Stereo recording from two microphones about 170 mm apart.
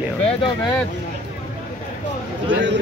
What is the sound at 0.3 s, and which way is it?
Speech, 30° left (ahead or behind).